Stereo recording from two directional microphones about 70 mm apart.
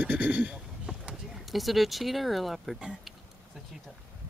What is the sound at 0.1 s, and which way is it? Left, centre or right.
Speech, right.